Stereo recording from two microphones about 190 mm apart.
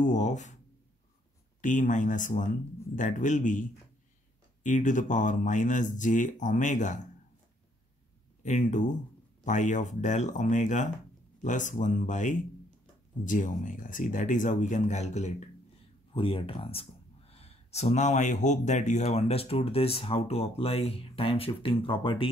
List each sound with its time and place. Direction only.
0.0 s speech: 40° left (ahead or behind)
1.6 s speech: 40° left (ahead or behind)
4.6 s speech: 40° left (ahead or behind)
8.4 s speech: 40° left (ahead or behind)